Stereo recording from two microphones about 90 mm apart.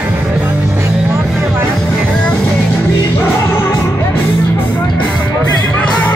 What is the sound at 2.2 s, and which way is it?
Music, 20° left (ahead or behind).